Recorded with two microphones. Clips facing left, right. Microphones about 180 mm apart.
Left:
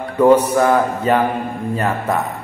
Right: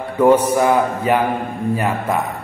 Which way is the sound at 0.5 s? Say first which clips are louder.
Even; 15° right (ahead or behind).